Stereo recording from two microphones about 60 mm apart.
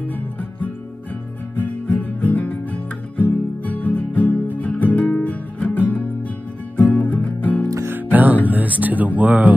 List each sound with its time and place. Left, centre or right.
0.0 s music: left
1.6 s guitar: left
5.2 s music: left
7.9 s music: right
8.5 s speech: right